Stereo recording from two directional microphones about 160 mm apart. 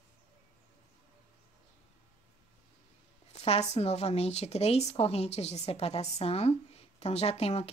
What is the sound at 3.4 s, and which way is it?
Speech, 40° left (ahead or behind).